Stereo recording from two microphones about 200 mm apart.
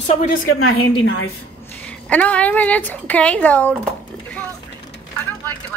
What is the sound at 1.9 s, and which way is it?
A woman's voice, 5° left (ahead or behind).